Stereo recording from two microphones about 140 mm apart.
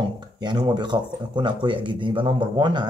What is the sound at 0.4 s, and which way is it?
Speech, 30° right (ahead or behind).